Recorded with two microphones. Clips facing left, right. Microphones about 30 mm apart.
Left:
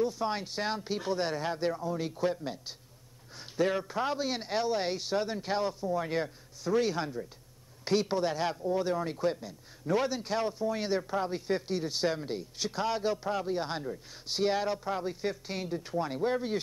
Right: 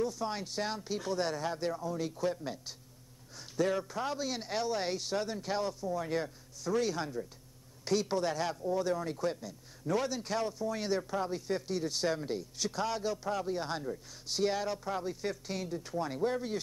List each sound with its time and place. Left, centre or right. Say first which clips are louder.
0.0 s speech: left 4 dB; left